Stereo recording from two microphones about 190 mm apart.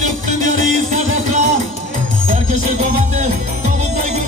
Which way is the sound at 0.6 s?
40° right (ahead or behind).